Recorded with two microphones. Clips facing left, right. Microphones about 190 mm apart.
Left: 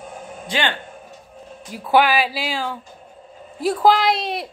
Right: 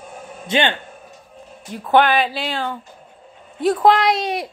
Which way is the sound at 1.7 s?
5° left (ahead or behind).